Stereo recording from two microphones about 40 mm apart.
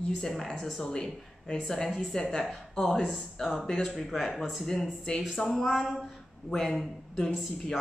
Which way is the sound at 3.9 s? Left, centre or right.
Centre.